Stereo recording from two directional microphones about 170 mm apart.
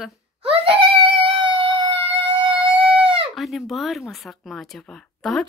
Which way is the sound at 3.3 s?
Centre (ahead or behind).